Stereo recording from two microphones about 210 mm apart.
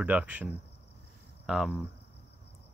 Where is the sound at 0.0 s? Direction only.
5° right (ahead or behind).